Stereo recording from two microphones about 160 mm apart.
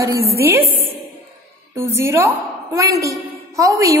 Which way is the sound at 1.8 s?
15° right (ahead or behind).